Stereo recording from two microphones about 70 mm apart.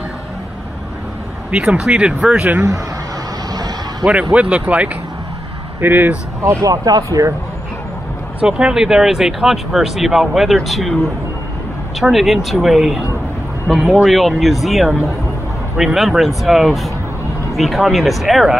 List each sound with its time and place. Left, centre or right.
1.5 s speech: centre
4.0 s speech: centre
6.6 s speech: right
7.1 s speech: right
8.4 s speech: centre
12.0 s speech: centre